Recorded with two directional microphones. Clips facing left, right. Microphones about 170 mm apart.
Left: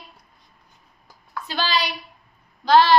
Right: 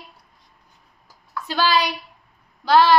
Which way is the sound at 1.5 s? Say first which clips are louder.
Right 4 dB; 10° right (ahead or behind).